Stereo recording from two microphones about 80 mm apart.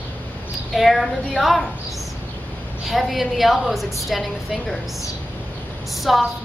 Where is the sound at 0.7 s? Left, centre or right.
Centre.